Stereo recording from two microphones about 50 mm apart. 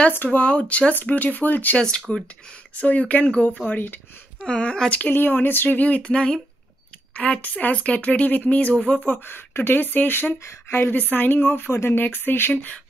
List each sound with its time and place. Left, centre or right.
0.3 s speech: left
1.8 s speech: centre
2.8 s speech: left
3.6 s speech: left
4.5 s speech: left
5.0 s speech: left
8.7 s speech: centre
9.0 s speech: left
11.7 s speech: left
12.0 s speech: left